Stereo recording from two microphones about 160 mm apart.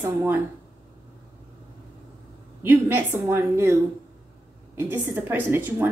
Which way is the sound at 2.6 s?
15° right (ahead or behind).